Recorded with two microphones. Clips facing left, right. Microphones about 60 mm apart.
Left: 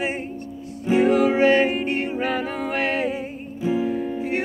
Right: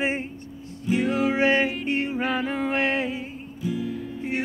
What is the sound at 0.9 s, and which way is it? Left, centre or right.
Music, left.